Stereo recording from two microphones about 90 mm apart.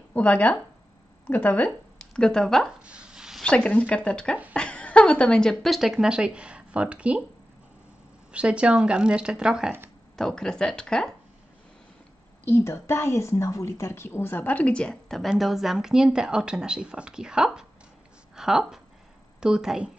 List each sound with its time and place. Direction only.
0.1 s speech: 15° left (ahead or behind)
2.8 s a sound: 10° right (ahead or behind)
3.4 s a woman's voice: 10° left (ahead or behind); by 7.2 s 15° right (ahead or behind)
8.3 s speech: 10° right (ahead or behind)
10.1 s speech: 5° left (ahead or behind)
12.4 s a woman's voice: 25° left (ahead or behind); by 19.9 s 5° right (ahead or behind)